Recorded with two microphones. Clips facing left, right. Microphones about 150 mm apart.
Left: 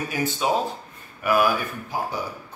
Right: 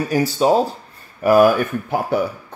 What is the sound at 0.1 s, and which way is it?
Speech, 40° right (ahead or behind).